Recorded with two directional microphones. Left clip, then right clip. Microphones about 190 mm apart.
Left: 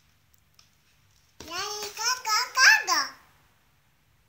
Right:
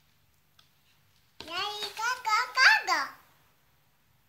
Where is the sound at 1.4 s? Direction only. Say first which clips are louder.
Even; 5° right (ahead or behind).